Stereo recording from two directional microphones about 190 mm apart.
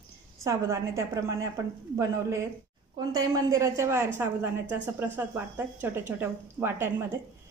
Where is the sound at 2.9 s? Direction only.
20° right (ahead or behind).